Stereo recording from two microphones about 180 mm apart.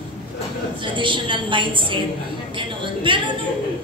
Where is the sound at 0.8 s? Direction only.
25° right (ahead or behind).